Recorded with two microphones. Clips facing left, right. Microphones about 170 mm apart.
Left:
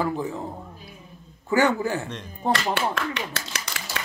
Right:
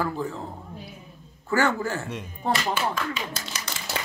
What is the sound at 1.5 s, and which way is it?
Speech, 15° left (ahead or behind).